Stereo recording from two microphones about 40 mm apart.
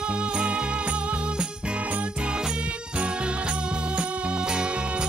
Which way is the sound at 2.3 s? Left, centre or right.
Centre.